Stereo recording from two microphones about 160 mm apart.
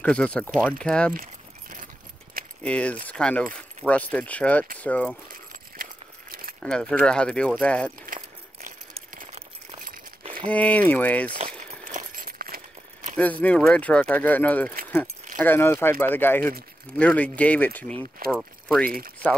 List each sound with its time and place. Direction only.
0.0 s speech: 5° left (ahead or behind)
2.6 s speech: 5° left (ahead or behind)
5.3 s keys jangling: 60° right (ahead or behind)
6.6 s speech: 5° left (ahead or behind)
8.1 s a sound: 60° right (ahead or behind)
10.5 s speech: 10° left (ahead or behind)
11.4 s keys jangling: 60° right (ahead or behind)
13.1 s speech: 10° left (ahead or behind)